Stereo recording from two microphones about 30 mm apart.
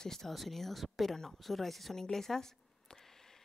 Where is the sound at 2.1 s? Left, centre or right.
Centre.